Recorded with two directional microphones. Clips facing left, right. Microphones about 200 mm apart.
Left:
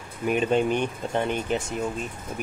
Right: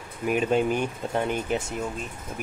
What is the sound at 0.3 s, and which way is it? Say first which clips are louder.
Speech: left 1 dB; 5° right (ahead or behind).